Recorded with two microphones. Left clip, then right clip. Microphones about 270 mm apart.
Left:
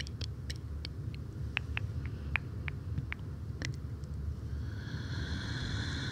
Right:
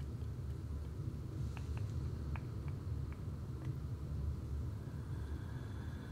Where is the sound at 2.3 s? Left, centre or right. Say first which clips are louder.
Left 13 dB; left.